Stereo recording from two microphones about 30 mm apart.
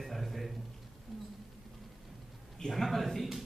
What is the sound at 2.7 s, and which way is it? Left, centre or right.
Speech, centre.